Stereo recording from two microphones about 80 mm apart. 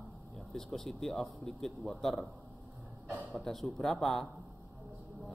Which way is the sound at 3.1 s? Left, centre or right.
Centre.